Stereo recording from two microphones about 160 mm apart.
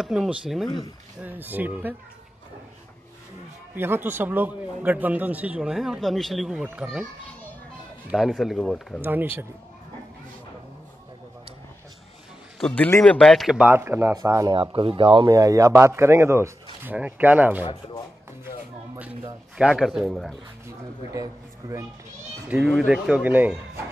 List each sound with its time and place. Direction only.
0.0 s a man's voice: 5° right (ahead or behind)
3.7 s a man's voice: 15° right (ahead or behind)
8.1 s speech: centre (ahead or behind)
9.0 s a man's voice: 15° right (ahead or behind)
12.5 s speech: 10° left (ahead or behind)
13.7 s a man's voice: 15° right (ahead or behind)
14.5 s speech: 30° right (ahead or behind)
15.2 s a man's voice: 20° right (ahead or behind)
17.6 s speech: 30° left (ahead or behind)
19.5 s speech: 5° right (ahead or behind)
21.1 s a man's voice: 20° right (ahead or behind)
22.5 s a man's voice: 5° right (ahead or behind)